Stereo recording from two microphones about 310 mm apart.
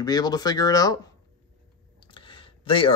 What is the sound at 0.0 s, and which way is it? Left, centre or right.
Speech, centre.